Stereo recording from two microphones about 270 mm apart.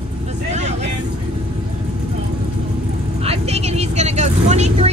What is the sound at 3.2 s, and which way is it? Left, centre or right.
Speech, right.